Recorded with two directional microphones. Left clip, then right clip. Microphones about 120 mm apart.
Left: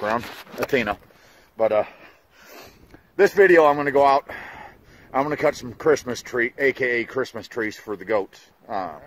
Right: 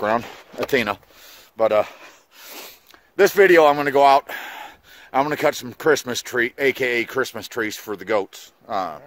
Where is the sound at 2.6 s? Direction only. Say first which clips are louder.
Right 5 dB; 10° right (ahead or behind).